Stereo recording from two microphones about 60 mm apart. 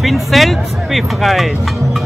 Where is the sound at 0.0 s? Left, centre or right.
Centre.